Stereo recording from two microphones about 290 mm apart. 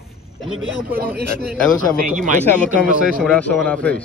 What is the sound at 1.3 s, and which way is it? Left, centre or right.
Speech, centre.